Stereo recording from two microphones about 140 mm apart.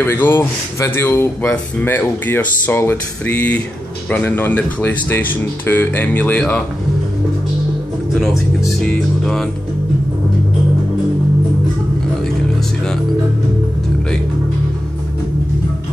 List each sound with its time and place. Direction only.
0.0 s speech: 15° left (ahead or behind)
8.8 s music: 5° left (ahead or behind)